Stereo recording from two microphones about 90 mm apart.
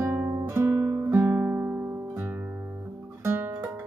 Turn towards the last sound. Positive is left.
turn(degrees=-25)  # may be behind; listen again after turning